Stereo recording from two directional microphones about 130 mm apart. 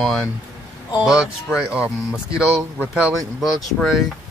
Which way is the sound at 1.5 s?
10° right (ahead or behind).